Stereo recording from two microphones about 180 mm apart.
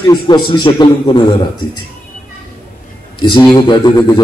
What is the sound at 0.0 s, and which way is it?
A man's voice, 25° left (ahead or behind).